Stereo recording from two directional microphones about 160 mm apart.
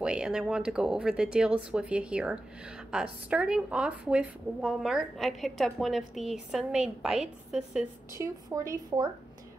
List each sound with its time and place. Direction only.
0.0 s speech: 5° right (ahead or behind)
8.2 s a woman's voice: 20° right (ahead or behind)